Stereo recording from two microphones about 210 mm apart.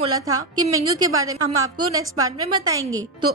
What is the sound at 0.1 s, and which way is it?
A woman's voice, 15° right (ahead or behind).